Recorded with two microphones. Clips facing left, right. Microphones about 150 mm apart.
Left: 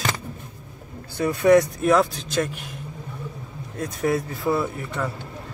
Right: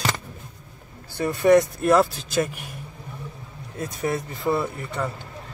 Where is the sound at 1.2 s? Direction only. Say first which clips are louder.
Left 1 dB; centre (ahead or behind).